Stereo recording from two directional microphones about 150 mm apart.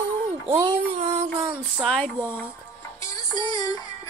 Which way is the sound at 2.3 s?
15° left (ahead or behind).